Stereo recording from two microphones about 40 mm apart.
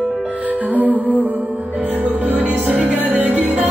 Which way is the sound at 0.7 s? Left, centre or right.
Right.